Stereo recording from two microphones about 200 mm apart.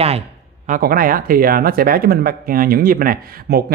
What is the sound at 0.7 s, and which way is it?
Speech, 45° right (ahead or behind).